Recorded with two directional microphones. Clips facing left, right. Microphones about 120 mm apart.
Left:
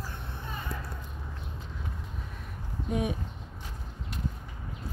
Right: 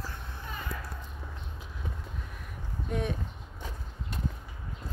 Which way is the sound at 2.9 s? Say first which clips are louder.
Left 2 dB; 10° left (ahead or behind).